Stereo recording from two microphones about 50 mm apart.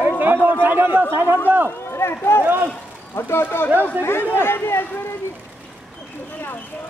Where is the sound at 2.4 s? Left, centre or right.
Right.